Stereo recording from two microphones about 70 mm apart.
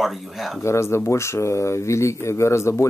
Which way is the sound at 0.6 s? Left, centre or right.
Left.